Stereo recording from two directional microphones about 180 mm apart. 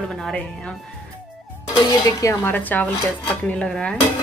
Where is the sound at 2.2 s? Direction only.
15° left (ahead or behind).